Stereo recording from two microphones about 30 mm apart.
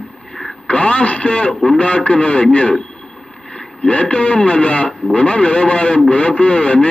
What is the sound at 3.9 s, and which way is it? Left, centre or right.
A man's voice, left.